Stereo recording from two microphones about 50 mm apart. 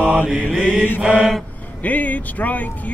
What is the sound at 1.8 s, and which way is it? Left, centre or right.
Speech, left.